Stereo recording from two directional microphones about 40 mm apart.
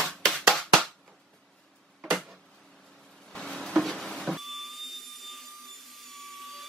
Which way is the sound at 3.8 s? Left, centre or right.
Centre.